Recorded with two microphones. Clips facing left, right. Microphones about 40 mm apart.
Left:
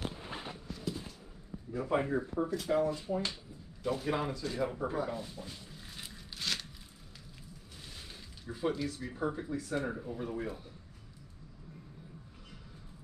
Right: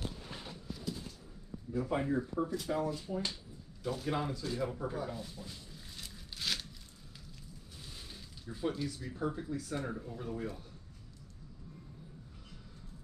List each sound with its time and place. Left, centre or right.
0.0 s a sound: left
1.7 s speech: left
2.5 s speech: centre
2.8 s speech: centre
4.3 s speech: centre
4.6 s speech: left
6.3 s a sound: centre
8.5 s speech: centre